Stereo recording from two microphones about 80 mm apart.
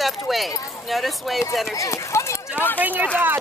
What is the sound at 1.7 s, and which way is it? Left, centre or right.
Speech, left.